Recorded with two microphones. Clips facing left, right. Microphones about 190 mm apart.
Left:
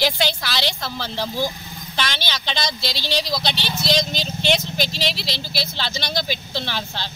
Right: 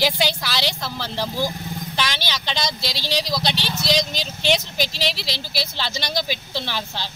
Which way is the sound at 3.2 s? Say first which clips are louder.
Right 1 dB; 10° right (ahead or behind).